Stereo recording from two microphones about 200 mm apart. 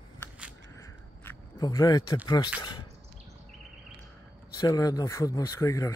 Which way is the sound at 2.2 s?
20° left (ahead or behind).